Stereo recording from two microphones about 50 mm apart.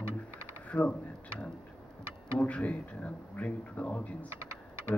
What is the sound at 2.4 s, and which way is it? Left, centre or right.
A man's voice, left.